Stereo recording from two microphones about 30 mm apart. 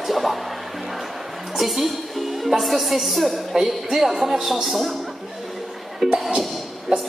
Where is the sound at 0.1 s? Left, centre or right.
Centre.